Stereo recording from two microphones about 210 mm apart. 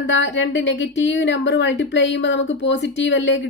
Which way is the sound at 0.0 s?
60° left (ahead or behind).